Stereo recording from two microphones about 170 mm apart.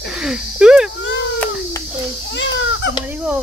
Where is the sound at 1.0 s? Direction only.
90° left.